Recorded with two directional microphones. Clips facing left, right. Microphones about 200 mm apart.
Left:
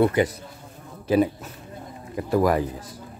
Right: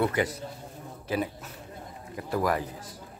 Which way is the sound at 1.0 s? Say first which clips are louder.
Left 10 dB; 25° left (ahead or behind).